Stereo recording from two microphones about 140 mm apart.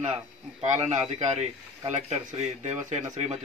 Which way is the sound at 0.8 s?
55° right (ahead or behind).